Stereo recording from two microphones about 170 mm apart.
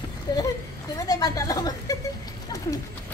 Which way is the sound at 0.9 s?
20° left (ahead or behind).